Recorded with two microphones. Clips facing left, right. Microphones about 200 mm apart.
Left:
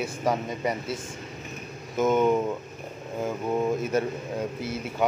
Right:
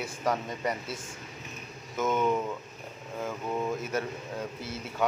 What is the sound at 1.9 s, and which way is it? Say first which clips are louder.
Speech: left 6 dB; 20° left (ahead or behind).